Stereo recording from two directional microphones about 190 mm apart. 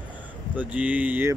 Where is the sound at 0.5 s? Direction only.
10° right (ahead or behind).